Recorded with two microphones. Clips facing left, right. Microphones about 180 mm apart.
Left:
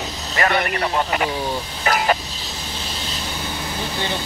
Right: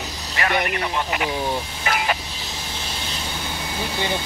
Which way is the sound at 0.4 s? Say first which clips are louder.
Left 3 dB; 45° left (ahead or behind).